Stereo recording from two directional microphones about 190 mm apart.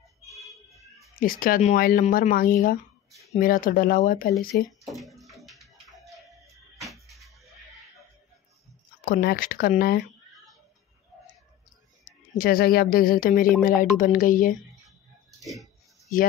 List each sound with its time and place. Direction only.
0.3 s a sound: centre (ahead or behind)
1.1 s speech: 45° left (ahead or behind)
4.8 s music: centre (ahead or behind)
9.0 s speech: 50° left (ahead or behind)
12.0 s speech: 50° left (ahead or behind)
15.4 s music: centre (ahead or behind)